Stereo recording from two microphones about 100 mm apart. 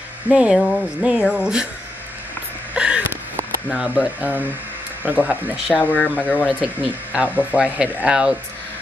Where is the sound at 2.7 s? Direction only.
10° right (ahead or behind).